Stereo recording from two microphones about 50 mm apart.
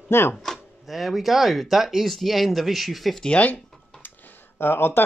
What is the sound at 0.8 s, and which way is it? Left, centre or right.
Speech, centre.